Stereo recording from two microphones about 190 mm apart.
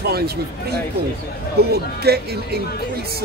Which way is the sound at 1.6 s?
55° right (ahead or behind).